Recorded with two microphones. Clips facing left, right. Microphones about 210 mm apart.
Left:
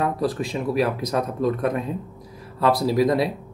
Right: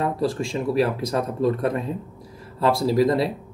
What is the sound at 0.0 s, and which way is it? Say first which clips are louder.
Speech: even; 25° right (ahead or behind).